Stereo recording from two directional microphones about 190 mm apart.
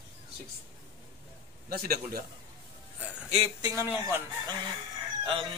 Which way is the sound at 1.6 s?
55° right (ahead or behind).